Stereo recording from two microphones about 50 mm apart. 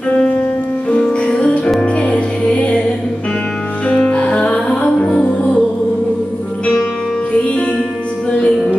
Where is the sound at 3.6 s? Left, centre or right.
Left.